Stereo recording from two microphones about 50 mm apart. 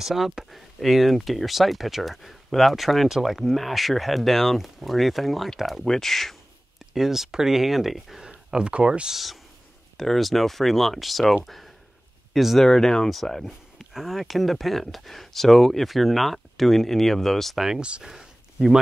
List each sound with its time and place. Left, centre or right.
0.0 s speech: centre
6.9 s speech: centre
8.3 s speech: centre
9.1 s speech: centre
12.6 s speech: centre
17.6 s speech: centre
18.0 s a sound: centre